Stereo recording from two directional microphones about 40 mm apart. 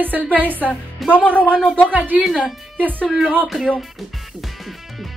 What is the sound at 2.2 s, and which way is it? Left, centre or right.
Speech, centre.